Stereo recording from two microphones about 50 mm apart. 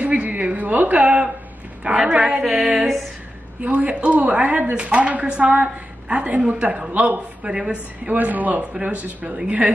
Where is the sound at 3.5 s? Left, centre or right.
Right.